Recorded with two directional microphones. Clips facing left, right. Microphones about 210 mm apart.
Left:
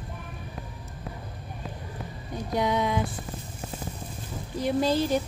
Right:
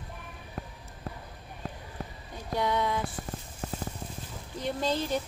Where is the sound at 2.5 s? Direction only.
15° left (ahead or behind).